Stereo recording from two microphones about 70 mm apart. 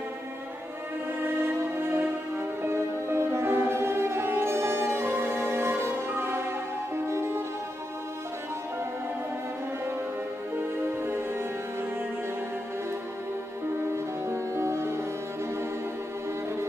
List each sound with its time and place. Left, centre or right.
1.2 s music: right
11.0 s music: right
13.9 s music: right